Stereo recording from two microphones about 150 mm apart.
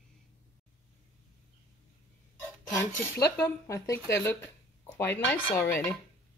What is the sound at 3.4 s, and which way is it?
Speech, 20° left (ahead or behind).